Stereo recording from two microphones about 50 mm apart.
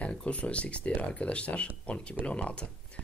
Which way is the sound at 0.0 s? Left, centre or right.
Left.